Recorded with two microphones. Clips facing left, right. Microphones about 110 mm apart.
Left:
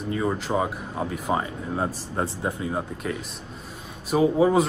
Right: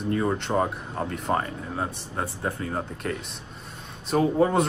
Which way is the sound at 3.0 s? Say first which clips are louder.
Left 1 dB; centre (ahead or behind).